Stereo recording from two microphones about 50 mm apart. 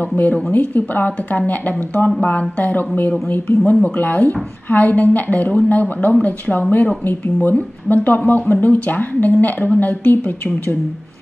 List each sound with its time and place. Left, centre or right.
0.0 s a woman's voice: left